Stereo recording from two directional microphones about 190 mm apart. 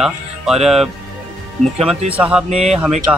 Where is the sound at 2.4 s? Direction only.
35° right (ahead or behind).